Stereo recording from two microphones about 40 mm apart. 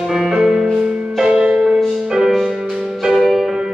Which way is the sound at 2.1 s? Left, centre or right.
Centre.